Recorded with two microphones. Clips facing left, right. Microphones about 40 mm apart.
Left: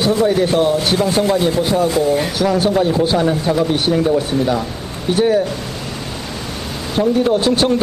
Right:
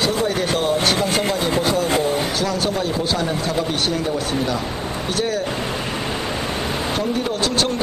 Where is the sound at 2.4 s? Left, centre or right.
Centre.